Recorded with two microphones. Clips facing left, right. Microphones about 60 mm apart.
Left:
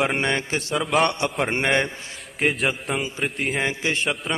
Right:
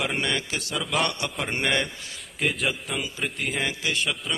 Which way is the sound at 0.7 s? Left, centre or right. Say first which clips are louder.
Left 6 dB; centre.